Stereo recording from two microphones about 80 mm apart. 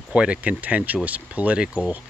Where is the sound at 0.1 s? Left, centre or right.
Centre.